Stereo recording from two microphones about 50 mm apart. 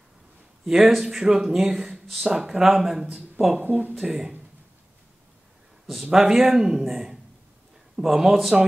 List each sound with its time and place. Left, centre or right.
0.7 s speech: centre
3.5 s speech: right
3.9 s speech: centre
6.1 s speech: centre